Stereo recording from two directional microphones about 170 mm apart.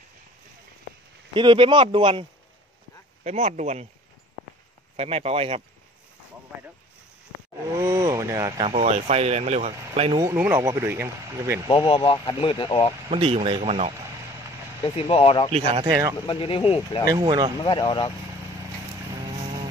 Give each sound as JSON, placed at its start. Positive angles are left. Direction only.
{"t": 1.3, "sound": "speech", "side_deg": -30}
{"t": 3.3, "sound": "speech", "side_deg": -40}
{"t": 4.9, "sound": "speech", "side_deg": -35}
{"t": 7.8, "sound": "speech", "side_deg": -20}
{"t": 8.6, "sound": "speech", "side_deg": -40}
{"t": 10.2, "sound": "speech", "side_deg": -15}
{"t": 11.6, "sound": "speech", "side_deg": 30}
{"t": 13.1, "sound": "speech", "side_deg": -35}
{"t": 15.0, "sound": "speech", "side_deg": 35}
{"t": 15.5, "sound": "speech", "side_deg": -30}
{"t": 16.3, "sound": "speech", "side_deg": 30}
{"t": 17.0, "sound": "speech", "side_deg": -20}
{"t": 17.6, "sound": "speech", "side_deg": 30}